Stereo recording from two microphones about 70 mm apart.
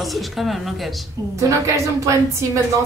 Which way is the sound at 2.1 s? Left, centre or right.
Right.